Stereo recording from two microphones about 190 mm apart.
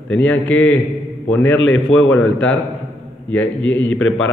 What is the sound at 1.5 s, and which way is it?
Speech, 90° left.